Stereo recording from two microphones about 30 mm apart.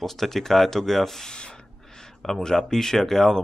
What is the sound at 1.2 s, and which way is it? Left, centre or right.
Gasp, left.